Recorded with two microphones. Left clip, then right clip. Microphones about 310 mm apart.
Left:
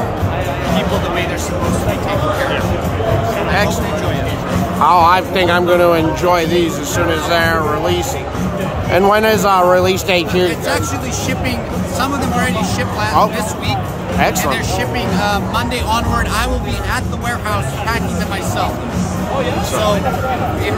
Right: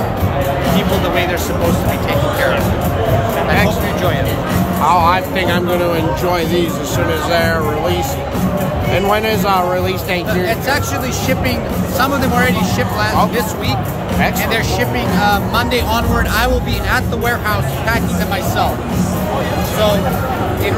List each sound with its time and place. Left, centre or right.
4.8 s speech: left
12.0 s speech: centre
15.1 s speech: centre